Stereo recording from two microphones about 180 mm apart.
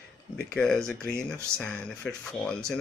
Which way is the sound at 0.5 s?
5° left (ahead or behind).